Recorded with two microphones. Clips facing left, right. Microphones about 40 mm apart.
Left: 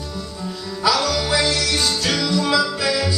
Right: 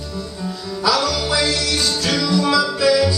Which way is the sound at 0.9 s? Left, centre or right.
Centre.